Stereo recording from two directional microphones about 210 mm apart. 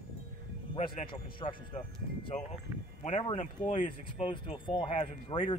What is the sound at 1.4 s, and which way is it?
Speech, 25° left (ahead or behind).